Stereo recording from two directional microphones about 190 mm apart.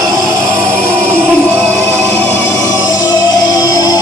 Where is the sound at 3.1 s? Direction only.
20° left (ahead or behind).